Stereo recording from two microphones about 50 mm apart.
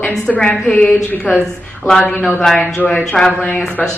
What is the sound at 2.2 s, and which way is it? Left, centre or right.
A woman's voice, centre.